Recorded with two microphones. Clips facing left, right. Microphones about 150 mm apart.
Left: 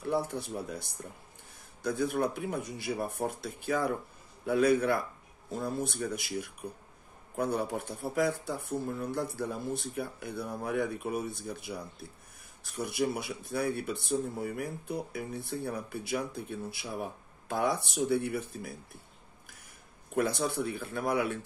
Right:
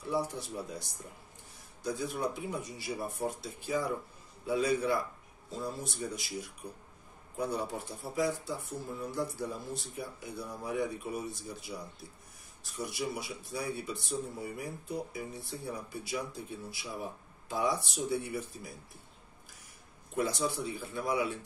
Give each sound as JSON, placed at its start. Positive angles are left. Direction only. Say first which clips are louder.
{"t": 0.0, "sound": "speech", "louder": "left 2 dB", "side_deg": 55}
{"t": 20.2, "sound": "speech", "louder": "left 3 dB", "side_deg": 60}